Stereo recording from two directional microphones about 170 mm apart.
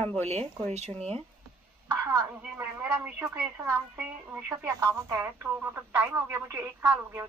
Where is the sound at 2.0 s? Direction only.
15° right (ahead or behind).